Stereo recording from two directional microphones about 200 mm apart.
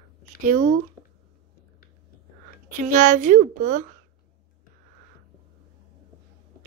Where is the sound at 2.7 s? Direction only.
40° right (ahead or behind).